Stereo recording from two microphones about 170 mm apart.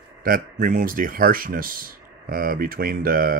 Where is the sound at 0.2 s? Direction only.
55° right (ahead or behind).